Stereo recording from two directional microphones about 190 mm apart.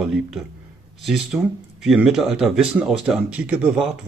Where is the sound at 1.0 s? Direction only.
Centre (ahead or behind).